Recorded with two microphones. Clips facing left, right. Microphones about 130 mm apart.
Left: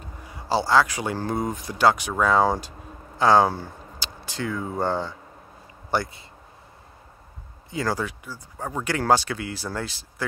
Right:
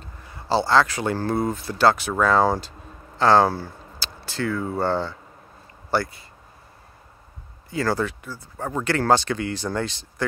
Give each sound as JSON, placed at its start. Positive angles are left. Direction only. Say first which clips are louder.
{"t": 0.0, "sound": "speech", "louder": "left 2 dB", "side_deg": 10}
{"t": 7.7, "sound": "speech", "louder": "right 3 dB", "side_deg": 10}